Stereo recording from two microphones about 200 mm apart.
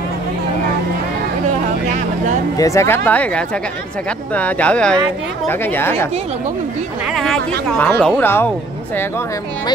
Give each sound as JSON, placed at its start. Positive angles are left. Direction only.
{"t": 1.9, "sound": "vehicle", "side_deg": -40}
{"t": 2.5, "sound": "speech", "side_deg": 15}
{"t": 7.1, "sound": "speech", "side_deg": 0}